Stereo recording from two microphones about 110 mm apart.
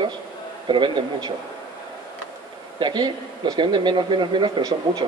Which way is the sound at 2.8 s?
40° right (ahead or behind).